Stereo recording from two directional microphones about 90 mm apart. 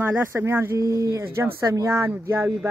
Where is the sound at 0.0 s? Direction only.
25° right (ahead or behind).